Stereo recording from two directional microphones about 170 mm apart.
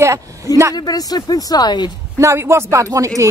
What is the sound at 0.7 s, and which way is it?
Speech, 25° left (ahead or behind).